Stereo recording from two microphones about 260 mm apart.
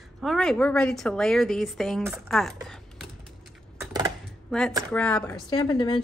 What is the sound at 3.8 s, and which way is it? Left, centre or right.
Dishes, centre.